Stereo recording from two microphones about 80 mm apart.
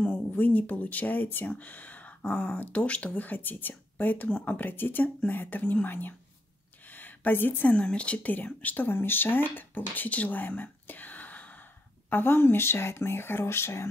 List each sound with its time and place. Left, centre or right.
0.3 s speech: left